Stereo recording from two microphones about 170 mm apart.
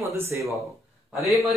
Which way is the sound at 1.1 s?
Centre (ahead or behind).